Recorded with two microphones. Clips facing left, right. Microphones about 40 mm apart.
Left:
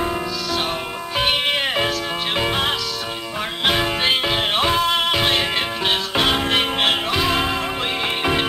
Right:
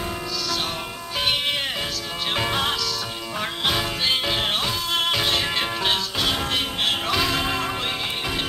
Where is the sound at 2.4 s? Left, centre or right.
Left.